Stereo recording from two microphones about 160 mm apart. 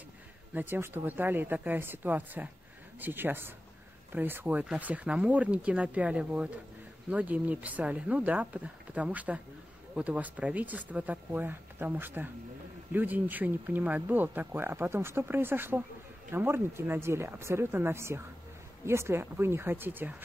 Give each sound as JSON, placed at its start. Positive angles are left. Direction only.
{"t": 0.6, "sound": "speech", "side_deg": -10}